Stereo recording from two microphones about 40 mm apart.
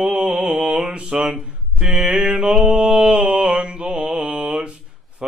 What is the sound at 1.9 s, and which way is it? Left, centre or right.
Mantra, centre.